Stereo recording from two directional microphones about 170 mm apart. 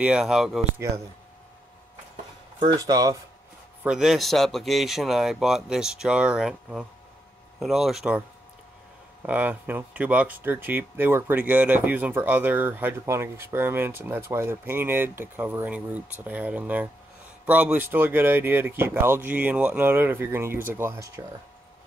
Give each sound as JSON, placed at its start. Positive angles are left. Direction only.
{"t": 0.0, "sound": "a man's voice", "side_deg": -5}
{"t": 2.6, "sound": "speech", "side_deg": -25}
{"t": 3.8, "sound": "a man's voice", "side_deg": -5}
{"t": 9.2, "sound": "speech", "side_deg": -10}